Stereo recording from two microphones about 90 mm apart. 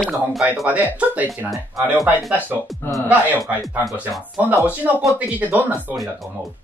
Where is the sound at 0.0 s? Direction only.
Centre (ahead or behind).